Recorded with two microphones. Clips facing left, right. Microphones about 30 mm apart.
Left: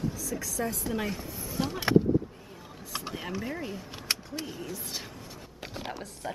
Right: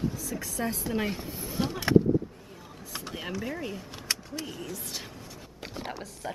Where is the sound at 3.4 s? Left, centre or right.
Centre.